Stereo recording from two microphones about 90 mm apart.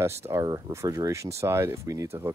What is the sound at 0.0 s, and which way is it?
Speech, 30° right (ahead or behind).